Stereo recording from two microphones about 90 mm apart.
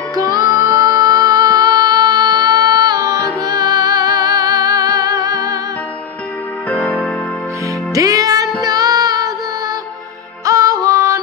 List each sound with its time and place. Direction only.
0.1 s music: 45° right (ahead or behind)
6.7 s music: 15° left (ahead or behind)
7.9 s music: 40° right (ahead or behind)
8.6 s child singing: 45° right (ahead or behind)
10.4 s music: 40° right (ahead or behind)